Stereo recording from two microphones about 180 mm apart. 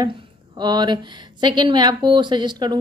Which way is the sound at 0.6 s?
25° right (ahead or behind).